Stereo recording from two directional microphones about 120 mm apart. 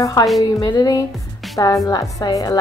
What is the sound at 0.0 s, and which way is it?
A woman's voice, 30° left (ahead or behind).